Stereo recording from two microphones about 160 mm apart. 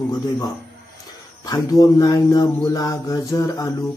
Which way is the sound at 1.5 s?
20° left (ahead or behind).